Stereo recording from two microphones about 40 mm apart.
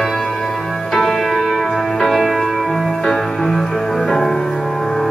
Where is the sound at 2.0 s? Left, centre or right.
Centre.